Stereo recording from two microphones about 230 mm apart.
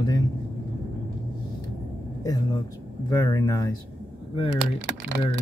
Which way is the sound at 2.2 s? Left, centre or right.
Centre.